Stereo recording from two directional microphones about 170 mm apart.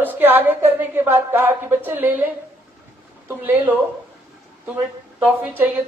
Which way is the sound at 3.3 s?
10° right (ahead or behind).